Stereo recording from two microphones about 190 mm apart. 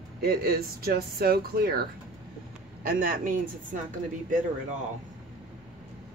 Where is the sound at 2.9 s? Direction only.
50° right (ahead or behind).